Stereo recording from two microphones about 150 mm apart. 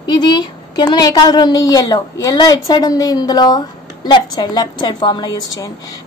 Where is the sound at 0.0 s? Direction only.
30° left (ahead or behind).